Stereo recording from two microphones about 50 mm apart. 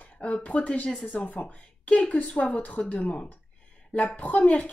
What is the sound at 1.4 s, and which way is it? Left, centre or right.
Speech, left.